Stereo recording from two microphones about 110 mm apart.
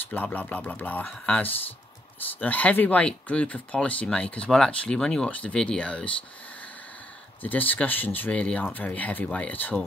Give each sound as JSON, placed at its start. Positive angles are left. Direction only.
{"t": 0.0, "sound": "speech", "side_deg": 15}
{"t": 7.4, "sound": "speech", "side_deg": 15}